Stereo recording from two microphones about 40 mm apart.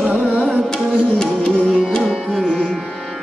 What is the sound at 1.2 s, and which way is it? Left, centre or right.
Music, centre.